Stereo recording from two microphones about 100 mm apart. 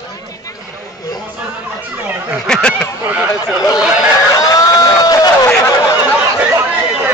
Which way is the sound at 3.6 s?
35° left (ahead or behind).